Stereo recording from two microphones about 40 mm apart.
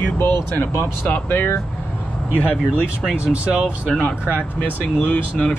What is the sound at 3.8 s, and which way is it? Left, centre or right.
Speech, left.